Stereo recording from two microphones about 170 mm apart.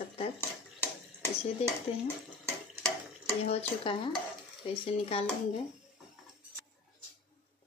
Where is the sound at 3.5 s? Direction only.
30° left (ahead or behind).